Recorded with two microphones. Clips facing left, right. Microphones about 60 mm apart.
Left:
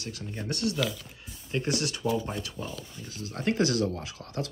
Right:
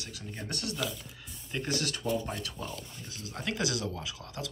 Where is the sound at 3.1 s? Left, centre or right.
Left.